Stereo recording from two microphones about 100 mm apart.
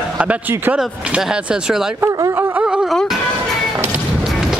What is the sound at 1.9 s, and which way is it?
Speech, 35° right (ahead or behind).